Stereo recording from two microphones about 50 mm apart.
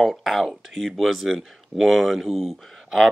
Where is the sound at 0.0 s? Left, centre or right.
Centre.